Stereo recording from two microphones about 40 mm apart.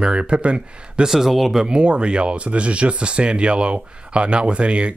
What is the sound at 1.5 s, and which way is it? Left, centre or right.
Speech, right.